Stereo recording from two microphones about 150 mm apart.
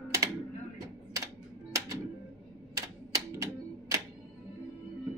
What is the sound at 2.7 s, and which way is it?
Typewriter, 25° right (ahead or behind).